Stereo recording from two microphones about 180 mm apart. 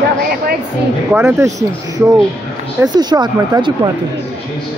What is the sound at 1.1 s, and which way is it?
Speech, 10° right (ahead or behind).